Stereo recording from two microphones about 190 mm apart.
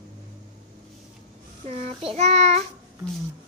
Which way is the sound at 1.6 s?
35° right (ahead or behind).